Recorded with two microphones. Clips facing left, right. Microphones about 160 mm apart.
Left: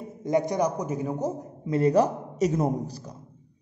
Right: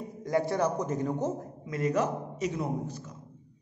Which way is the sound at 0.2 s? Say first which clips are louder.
Left 3 dB; 20° left (ahead or behind).